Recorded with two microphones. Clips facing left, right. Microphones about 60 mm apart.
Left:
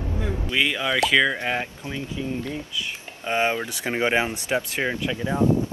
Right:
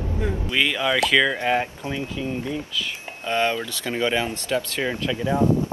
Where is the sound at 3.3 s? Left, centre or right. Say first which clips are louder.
Even; left.